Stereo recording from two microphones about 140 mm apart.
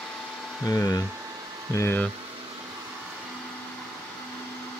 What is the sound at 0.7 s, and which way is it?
Speech, 25° left (ahead or behind).